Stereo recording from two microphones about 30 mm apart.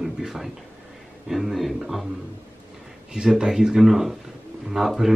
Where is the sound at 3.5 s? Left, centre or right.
Right.